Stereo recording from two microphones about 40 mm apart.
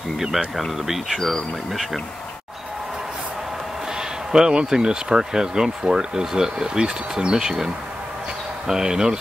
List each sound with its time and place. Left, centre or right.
0.6 s speech: centre
1.1 s speech: centre
4.3 s speech: centre